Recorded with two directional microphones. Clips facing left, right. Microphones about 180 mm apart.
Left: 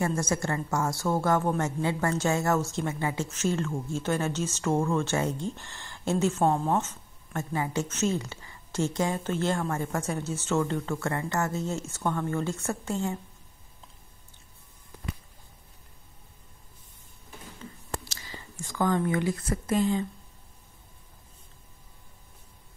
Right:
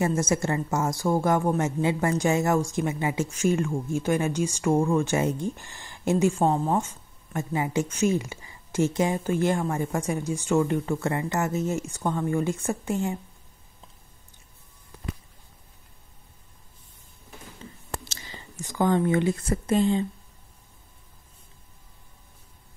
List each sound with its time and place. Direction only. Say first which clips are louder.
0.0 s speech: right 4 dB; 20° right (ahead or behind)
6.4 s a woman's voice: right 1 dB; centre (ahead or behind)
6.7 s speech: right 1 dB; 10° right (ahead or behind)
18.0 s speech: right 1 dB; 20° right (ahead or behind)